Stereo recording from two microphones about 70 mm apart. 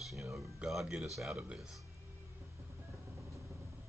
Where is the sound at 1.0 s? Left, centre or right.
Centre.